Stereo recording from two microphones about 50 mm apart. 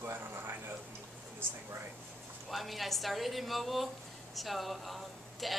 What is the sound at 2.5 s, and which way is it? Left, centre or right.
Speech, centre.